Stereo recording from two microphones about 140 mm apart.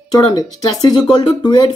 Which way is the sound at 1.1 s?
30° left (ahead or behind).